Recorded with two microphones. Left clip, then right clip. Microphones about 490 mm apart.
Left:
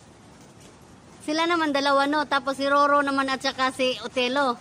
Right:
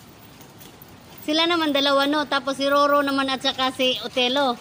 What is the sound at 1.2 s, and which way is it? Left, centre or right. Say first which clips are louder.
Speech: right 3 dB; left.